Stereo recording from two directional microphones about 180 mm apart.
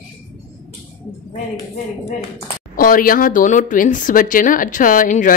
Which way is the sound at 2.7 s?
50° left (ahead or behind).